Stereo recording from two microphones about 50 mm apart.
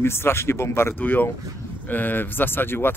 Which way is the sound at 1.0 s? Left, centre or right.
Left.